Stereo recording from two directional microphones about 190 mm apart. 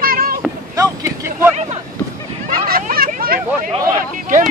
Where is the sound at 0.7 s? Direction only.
15° right (ahead or behind).